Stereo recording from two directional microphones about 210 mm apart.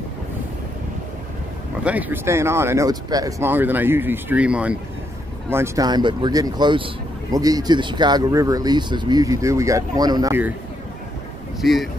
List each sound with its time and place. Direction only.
1.9 s speech: 10° right (ahead or behind)
11.6 s speech: centre (ahead or behind)